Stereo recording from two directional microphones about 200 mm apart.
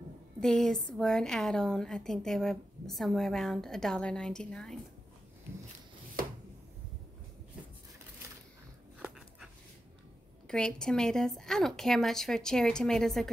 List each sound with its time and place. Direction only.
0.4 s a woman's voice: centre (ahead or behind)
6.2 s a sound: 45° right (ahead or behind)
10.5 s a woman's voice: 5° left (ahead or behind)